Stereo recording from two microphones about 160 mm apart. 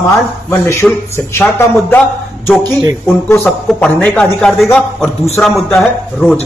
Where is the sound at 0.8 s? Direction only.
5° left (ahead or behind).